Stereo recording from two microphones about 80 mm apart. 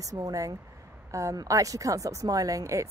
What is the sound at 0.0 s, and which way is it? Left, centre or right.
Speech, right.